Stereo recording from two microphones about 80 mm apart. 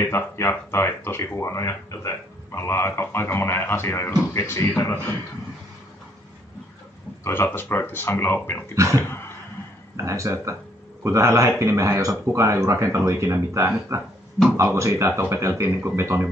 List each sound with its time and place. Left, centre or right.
0.0 s speech: left
7.2 s speech: left
8.7 s speech: right
9.0 s a sound: left
9.9 s speech: right